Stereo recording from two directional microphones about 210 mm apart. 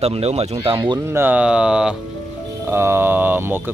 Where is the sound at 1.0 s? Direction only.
10° right (ahead or behind).